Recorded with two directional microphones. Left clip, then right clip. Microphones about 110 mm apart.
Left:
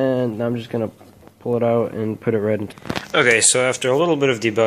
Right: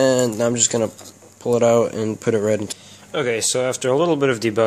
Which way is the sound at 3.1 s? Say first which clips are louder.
Left 6 dB; 5° right (ahead or behind).